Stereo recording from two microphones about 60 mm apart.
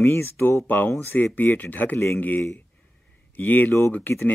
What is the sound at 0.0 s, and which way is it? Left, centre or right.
Speech, left.